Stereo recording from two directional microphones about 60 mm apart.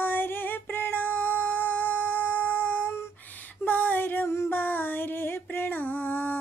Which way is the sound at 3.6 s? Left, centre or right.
Left.